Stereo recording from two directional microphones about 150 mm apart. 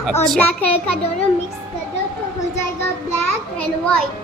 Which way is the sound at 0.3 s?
10° left (ahead or behind).